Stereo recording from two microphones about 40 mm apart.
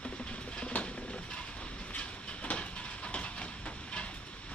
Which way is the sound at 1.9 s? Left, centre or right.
Left.